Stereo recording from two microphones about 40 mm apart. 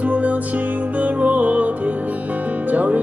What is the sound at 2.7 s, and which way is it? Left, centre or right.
Speech, right.